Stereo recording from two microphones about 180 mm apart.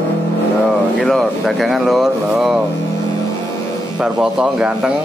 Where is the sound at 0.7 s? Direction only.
Centre (ahead or behind).